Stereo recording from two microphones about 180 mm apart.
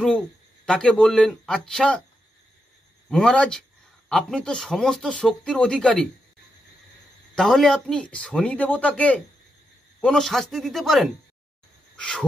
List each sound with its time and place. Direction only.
0.7 s speech: 5° left (ahead or behind)
3.1 s speech: 5° left (ahead or behind)
7.3 s speech: centre (ahead or behind)